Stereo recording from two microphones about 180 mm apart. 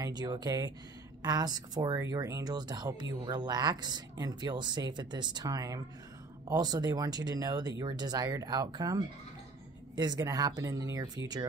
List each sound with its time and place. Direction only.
0.2 s speech: 25° right (ahead or behind)